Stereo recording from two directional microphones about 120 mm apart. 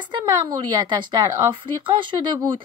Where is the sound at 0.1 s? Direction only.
40° right (ahead or behind).